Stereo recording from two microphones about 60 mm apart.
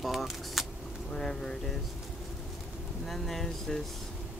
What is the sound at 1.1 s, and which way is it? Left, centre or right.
Speech, centre.